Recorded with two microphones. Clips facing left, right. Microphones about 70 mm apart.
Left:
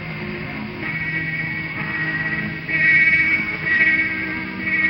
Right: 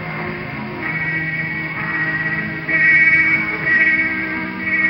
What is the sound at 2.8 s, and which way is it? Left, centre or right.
Music, right.